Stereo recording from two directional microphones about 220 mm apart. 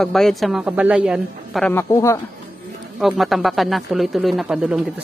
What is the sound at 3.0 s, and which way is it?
Speech, centre (ahead or behind).